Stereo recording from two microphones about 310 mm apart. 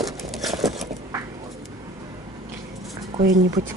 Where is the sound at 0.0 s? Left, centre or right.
Centre.